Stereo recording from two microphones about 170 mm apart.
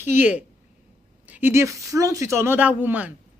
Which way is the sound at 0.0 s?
10° right (ahead or behind).